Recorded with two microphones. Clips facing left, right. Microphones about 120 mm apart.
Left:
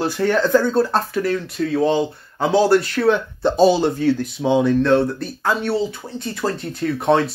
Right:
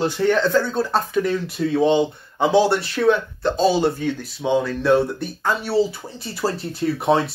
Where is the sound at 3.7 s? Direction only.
10° right (ahead or behind).